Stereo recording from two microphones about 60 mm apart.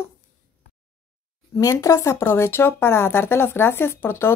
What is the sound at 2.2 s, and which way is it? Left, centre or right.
A woman's voice, left.